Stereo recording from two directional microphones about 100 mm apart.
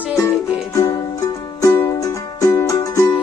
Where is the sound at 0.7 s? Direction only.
35° left (ahead or behind).